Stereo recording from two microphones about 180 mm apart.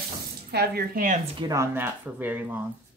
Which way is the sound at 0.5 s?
65° right (ahead or behind).